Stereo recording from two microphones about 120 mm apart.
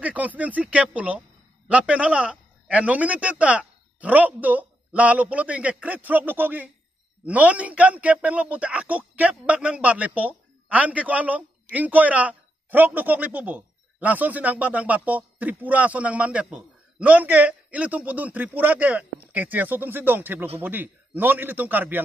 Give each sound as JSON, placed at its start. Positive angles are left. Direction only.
{"t": 0.0, "sound": "a man's voice", "side_deg": -10}